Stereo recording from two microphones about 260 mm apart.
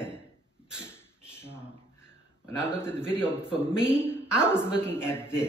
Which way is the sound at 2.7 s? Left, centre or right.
Centre.